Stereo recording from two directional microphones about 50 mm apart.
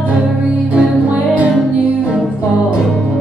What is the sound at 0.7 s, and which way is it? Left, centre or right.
Music, right.